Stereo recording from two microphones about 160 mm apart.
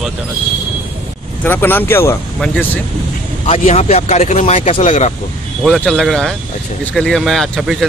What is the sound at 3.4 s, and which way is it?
Speech, 40° left (ahead or behind).